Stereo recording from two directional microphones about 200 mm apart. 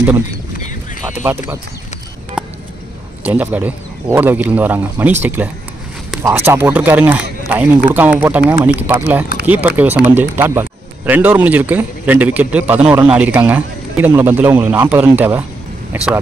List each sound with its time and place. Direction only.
1.1 s speech: 10° right (ahead or behind)
3.3 s a man's voice: 10° right (ahead or behind)